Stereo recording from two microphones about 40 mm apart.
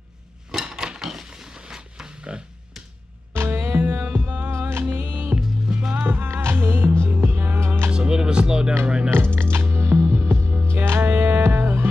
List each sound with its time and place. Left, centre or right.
0.5 s a sound: centre
2.0 s music: right
3.3 s music: right
4.5 s music: right
4.8 s music: right
5.3 s music: right
6.0 s music: right
7.1 s music: right
7.6 s music: right
7.9 s music: right
9.3 s music: right
11.0 s music: right